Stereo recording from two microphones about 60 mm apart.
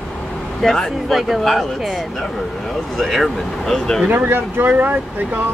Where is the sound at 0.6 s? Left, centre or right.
Centre.